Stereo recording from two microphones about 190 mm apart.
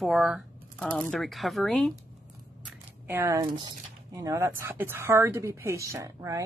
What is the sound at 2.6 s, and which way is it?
Speech, 10° right (ahead or behind).